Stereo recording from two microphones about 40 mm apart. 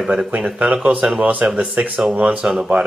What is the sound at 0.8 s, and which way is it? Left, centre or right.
Speech, right.